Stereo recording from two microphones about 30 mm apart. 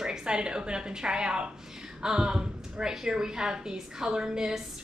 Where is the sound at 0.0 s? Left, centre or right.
Right.